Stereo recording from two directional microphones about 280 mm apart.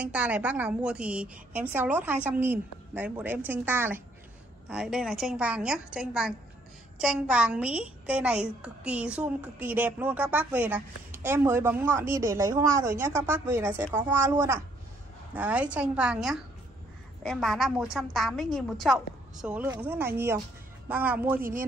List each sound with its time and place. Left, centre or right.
0.0 s a woman's voice: centre
21.4 s speech: right